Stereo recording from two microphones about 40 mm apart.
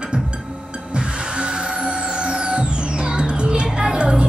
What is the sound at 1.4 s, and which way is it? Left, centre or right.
Music, right.